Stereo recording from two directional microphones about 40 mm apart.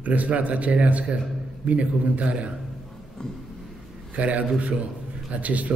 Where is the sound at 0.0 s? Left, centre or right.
Right.